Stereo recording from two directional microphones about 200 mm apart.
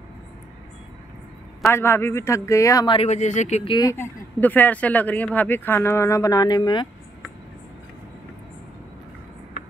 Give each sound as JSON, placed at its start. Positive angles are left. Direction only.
{"t": 1.7, "sound": "speech", "side_deg": 10}
{"t": 3.7, "sound": "speech", "side_deg": 15}